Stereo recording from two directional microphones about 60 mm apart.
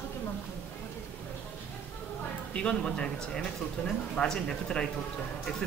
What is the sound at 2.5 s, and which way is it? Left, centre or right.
Speech, centre.